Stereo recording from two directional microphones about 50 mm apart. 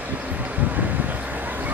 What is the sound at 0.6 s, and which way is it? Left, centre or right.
Vehicle, right.